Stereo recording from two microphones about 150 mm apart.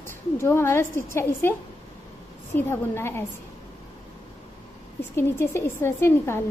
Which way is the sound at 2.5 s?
15° left (ahead or behind).